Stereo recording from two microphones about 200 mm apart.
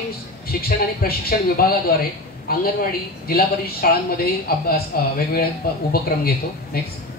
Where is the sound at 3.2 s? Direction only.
50° left (ahead or behind).